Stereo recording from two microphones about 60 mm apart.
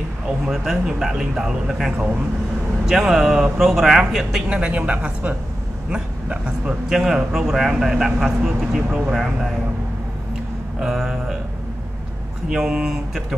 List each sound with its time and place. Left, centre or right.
0.5 s a man's voice: centre
6.9 s speech: centre
10.8 s a sound: centre
12.4 s speech: centre